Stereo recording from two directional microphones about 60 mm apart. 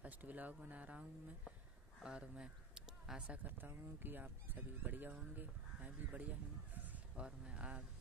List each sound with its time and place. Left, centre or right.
0.0 s speech: right
2.0 s speech: centre
3.3 s speech: right
6.7 s a sound: right
7.2 s speech: centre